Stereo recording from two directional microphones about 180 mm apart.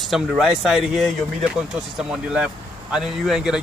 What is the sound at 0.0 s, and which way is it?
Speech, centre (ahead or behind).